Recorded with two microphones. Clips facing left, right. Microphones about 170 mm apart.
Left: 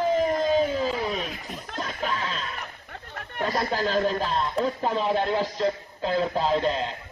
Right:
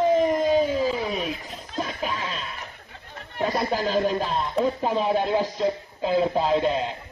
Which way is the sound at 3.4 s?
15° right (ahead or behind).